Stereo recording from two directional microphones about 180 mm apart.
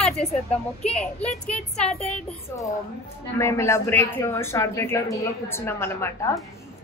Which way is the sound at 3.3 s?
15° left (ahead or behind).